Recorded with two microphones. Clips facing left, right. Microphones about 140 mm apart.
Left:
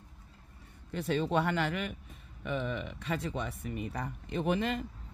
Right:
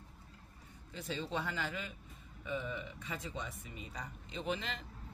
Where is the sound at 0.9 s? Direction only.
60° left (ahead or behind).